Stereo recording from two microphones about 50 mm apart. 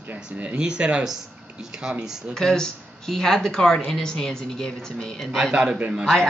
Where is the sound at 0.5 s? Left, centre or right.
Centre.